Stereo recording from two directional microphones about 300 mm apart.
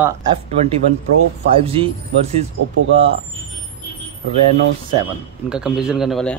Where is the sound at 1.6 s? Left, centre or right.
Centre.